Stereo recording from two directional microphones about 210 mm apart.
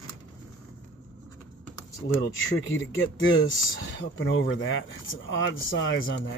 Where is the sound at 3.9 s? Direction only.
60° left (ahead or behind).